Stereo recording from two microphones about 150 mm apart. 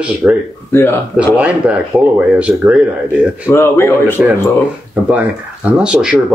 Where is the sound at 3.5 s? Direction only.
15° left (ahead or behind).